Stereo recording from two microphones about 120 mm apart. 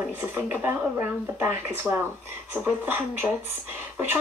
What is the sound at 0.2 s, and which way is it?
Speech, 20° right (ahead or behind).